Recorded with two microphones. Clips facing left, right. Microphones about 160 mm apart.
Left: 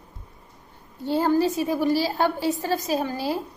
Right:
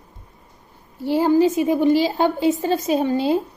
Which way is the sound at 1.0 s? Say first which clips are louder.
Right 5 dB; 10° right (ahead or behind).